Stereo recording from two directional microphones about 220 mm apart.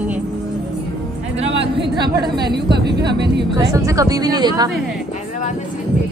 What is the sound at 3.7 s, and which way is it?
Speech, 15° right (ahead or behind).